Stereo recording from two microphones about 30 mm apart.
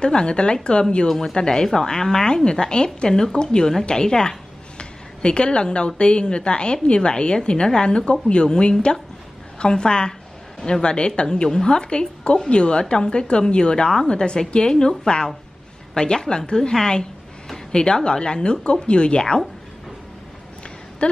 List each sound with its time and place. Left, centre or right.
0.0 s a woman's voice: left
1.0 s speech: centre
1.3 s a woman's voice: left
4.7 s a woman's voice: left
17.7 s a woman's voice: left
21.0 s a sound: left